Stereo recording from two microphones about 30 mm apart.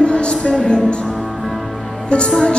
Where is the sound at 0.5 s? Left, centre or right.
Left.